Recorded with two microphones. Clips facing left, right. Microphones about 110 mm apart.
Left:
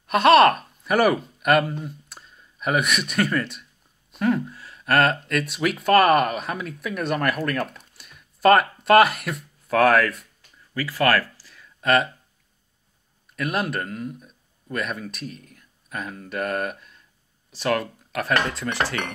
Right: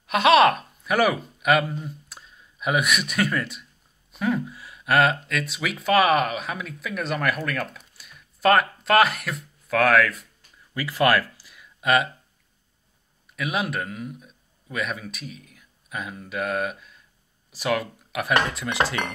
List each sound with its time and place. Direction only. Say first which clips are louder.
0.0 s speech: left 2 dB; centre (ahead or behind)
10.7 s a sound: even; 20° right (ahead or behind)
13.4 s speech: left 1 dB; centre (ahead or behind); by 18.9 s 20° right (ahead or behind)